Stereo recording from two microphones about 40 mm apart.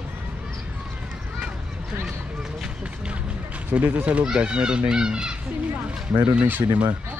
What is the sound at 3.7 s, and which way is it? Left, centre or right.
Speech, right.